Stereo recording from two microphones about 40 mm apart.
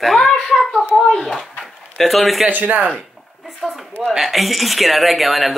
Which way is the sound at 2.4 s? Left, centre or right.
Right.